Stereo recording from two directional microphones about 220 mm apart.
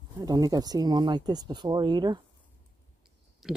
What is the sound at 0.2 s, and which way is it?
Speech, 15° right (ahead or behind).